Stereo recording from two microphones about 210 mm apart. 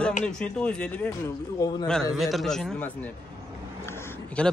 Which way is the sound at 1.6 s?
15° left (ahead or behind).